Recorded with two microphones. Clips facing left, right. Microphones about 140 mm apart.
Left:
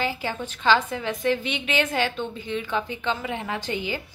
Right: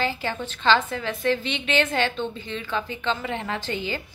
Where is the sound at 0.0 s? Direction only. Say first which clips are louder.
Right 1 dB; 10° left (ahead or behind).